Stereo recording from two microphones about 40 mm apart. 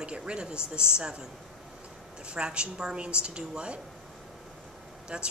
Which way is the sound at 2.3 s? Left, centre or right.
Right.